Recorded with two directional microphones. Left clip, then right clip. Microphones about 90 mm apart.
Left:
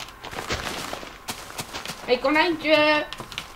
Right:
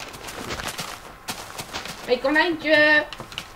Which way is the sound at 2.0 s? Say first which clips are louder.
Even; 15° left (ahead or behind).